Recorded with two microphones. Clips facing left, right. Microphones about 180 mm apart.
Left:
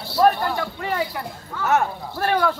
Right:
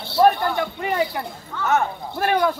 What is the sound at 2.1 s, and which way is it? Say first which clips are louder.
Speech: right 1 dB; 15° right (ahead or behind).